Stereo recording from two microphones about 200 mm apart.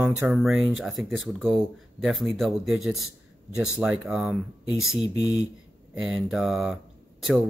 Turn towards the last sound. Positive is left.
turn(degrees=0)  # may be behind; listen again after turning